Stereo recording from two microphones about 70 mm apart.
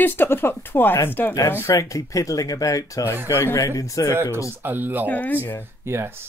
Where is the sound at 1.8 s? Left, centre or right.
Left.